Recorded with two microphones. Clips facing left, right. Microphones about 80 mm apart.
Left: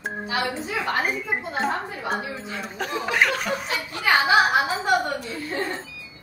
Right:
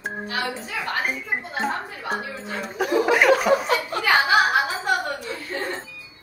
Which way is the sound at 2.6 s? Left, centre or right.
Centre.